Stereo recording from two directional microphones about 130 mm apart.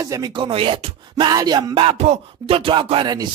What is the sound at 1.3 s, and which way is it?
Speech, 30° right (ahead or behind).